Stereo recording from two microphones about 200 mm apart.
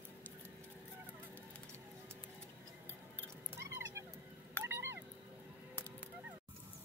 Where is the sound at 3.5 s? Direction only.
15° right (ahead or behind).